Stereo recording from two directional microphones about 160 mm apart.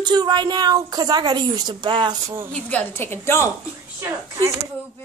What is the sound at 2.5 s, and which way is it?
Speech, 10° left (ahead or behind).